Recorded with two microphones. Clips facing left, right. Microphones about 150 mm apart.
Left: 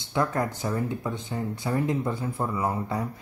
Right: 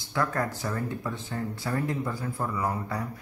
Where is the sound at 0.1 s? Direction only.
20° left (ahead or behind).